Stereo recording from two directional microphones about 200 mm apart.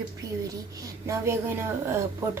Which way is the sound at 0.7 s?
15° right (ahead or behind).